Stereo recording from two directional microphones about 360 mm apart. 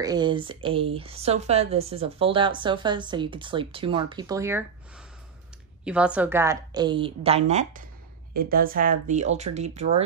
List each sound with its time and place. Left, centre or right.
0.0 s a woman's voice: centre
5.9 s a woman's voice: centre